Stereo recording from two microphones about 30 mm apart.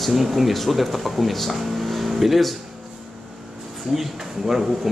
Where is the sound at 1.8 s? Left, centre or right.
Centre.